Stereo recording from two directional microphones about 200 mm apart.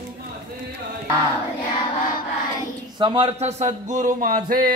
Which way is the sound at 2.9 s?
25° right (ahead or behind).